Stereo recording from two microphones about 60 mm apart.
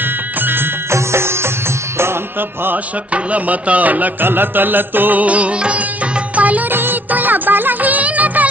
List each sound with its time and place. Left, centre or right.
0.0 s music: right
3.1 s music: right
6.7 s music: right